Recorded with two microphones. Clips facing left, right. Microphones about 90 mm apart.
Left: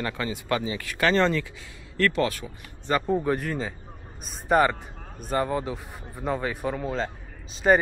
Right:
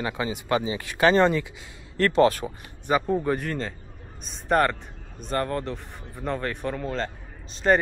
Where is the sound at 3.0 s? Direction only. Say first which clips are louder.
Even; centre (ahead or behind).